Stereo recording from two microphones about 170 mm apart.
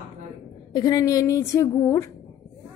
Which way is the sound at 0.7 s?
25° left (ahead or behind).